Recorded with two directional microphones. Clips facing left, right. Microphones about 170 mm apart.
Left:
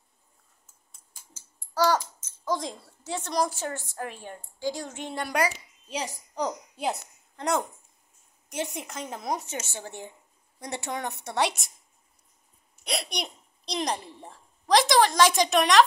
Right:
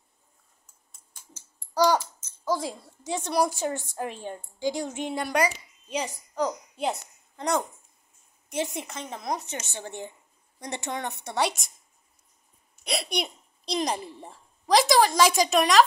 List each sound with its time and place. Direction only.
1.7 s a child's voice: 15° right (ahead or behind)
5.2 s a woman's voice: centre (ahead or behind)
6.3 s a child's voice: 15° left (ahead or behind)
6.9 s a woman's voice: centre (ahead or behind)
12.8 s a child's voice: centre (ahead or behind)